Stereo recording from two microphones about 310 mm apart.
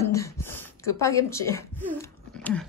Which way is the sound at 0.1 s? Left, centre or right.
Centre.